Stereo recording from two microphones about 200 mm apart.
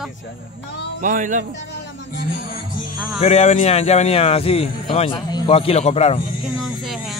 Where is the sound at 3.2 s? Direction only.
35° left (ahead or behind).